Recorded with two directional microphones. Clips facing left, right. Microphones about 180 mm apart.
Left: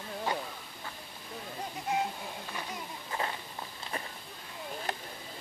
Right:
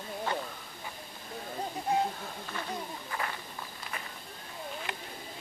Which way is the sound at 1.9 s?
35° right (ahead or behind).